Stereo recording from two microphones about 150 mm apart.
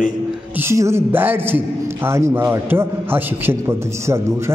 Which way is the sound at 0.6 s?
20° right (ahead or behind).